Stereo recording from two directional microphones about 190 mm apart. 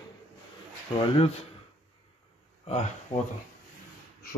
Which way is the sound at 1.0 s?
30° left (ahead or behind).